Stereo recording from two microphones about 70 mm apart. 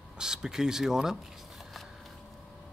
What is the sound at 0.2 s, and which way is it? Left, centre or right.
Speech, centre.